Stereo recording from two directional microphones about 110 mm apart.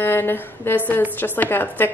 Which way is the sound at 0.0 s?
20° left (ahead or behind).